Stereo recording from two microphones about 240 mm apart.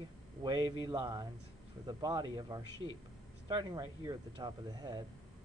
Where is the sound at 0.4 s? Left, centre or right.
Centre.